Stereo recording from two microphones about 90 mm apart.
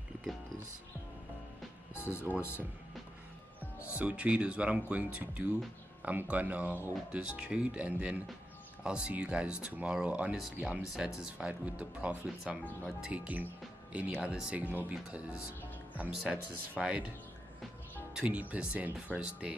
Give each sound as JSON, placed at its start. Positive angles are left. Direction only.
{"t": 2.0, "sound": "speech", "side_deg": 25}
{"t": 3.9, "sound": "speech", "side_deg": -15}
{"t": 18.1, "sound": "speech", "side_deg": -15}